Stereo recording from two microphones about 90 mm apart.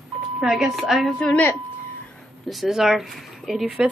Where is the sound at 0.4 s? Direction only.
5° right (ahead or behind).